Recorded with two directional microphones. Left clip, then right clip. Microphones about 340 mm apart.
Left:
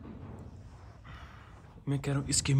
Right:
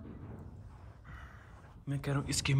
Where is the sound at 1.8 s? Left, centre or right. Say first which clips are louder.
Left 3 dB; centre.